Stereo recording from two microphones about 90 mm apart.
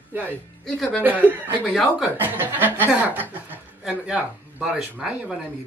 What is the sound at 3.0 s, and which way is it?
Chuckle, 20° right (ahead or behind).